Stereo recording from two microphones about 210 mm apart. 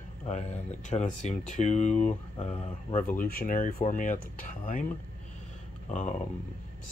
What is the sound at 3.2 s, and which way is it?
Speech, 40° left (ahead or behind).